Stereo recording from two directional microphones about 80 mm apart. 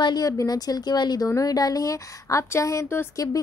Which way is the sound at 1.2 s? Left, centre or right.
Left.